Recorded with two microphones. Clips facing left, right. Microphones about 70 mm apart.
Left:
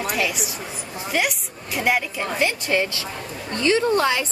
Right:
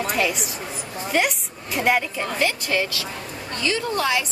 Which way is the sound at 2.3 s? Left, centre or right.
Centre.